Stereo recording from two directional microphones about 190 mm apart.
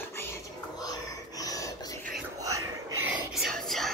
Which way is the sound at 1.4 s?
20° left (ahead or behind).